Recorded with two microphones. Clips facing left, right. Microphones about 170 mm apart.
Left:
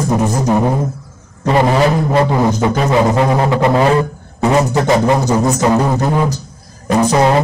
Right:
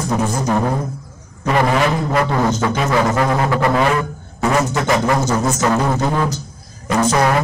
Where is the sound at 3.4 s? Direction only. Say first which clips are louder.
Left 4 dB; 20° left (ahead or behind).